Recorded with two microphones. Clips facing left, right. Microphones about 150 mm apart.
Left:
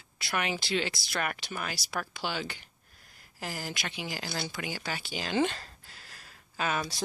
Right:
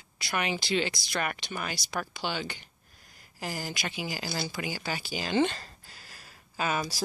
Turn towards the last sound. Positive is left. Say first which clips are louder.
# right 1 dB
turn(degrees=0)  # may be behind; listen again after turning